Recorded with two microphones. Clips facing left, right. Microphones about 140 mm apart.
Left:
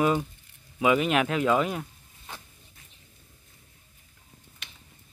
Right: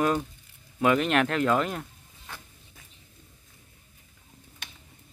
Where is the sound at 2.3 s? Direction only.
20° left (ahead or behind).